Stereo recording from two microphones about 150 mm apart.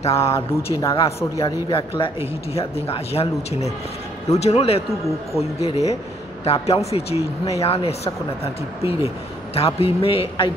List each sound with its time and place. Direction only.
0.0 s speech: 40° left (ahead or behind)
0.7 s speech: 20° left (ahead or behind)
1.4 s a man's voice: 35° left (ahead or behind)
9.6 s speech: 40° left (ahead or behind)